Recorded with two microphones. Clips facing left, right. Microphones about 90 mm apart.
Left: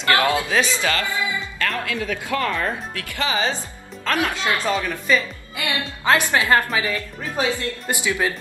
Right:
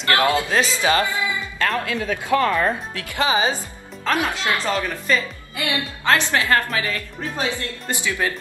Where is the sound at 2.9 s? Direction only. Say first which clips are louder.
Right 3 dB; 20° right (ahead or behind).